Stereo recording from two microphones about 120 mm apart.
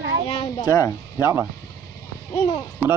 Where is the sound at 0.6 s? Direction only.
25° left (ahead or behind).